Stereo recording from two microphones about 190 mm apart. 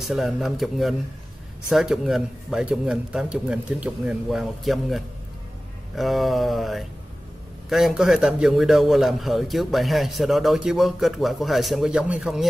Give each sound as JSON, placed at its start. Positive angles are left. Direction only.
{"t": 0.0, "sound": "a man's voice", "side_deg": 0}